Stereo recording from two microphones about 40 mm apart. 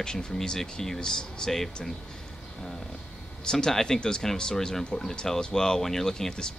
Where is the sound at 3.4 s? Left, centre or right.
Centre.